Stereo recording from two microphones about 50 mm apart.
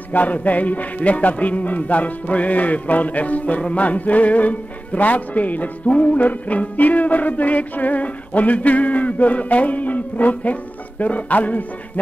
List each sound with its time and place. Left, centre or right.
0.1 s music: left